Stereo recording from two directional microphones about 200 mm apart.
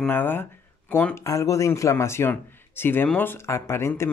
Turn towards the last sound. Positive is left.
turn(degrees=15)  # may be behind; listen again after turning